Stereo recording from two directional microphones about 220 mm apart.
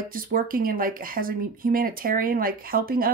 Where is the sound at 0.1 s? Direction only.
40° right (ahead or behind).